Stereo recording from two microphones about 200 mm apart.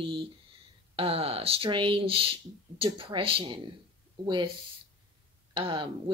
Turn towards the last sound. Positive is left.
turn(degrees=-25)  # may be behind; listen again after turning